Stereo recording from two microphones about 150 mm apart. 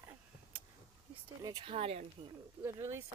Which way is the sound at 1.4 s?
25° right (ahead or behind).